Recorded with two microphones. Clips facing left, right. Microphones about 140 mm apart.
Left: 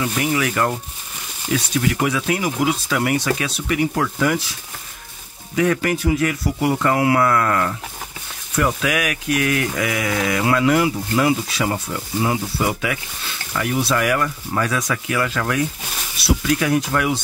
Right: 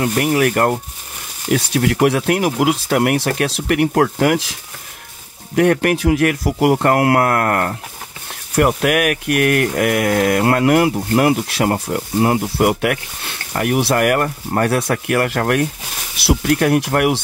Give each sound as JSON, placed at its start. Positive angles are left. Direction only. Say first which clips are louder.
{"t": 0.0, "sound": "speech", "louder": "right 5 dB", "side_deg": -55}
{"t": 1.5, "sound": "speech", "louder": "right 4 dB", "side_deg": -70}
{"t": 5.6, "sound": "speech", "louder": "right 5 dB", "side_deg": -65}
{"t": 16.2, "sound": "speech", "louder": "right 3 dB", "side_deg": -80}
{"t": 16.5, "sound": "speech", "louder": "right 4 dB", "side_deg": -60}